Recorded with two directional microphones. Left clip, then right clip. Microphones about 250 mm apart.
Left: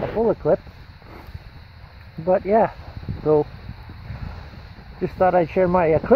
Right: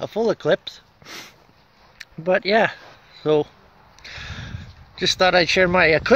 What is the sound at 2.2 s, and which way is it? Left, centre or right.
Speech, right.